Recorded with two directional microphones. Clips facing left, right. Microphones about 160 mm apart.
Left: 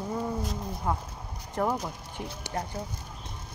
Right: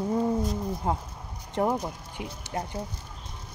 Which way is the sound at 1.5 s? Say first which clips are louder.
Right 2 dB; 20° right (ahead or behind).